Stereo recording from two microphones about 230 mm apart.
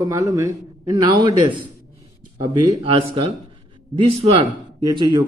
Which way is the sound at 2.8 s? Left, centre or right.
Right.